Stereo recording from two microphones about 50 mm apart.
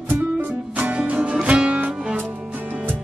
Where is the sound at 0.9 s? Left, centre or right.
Right.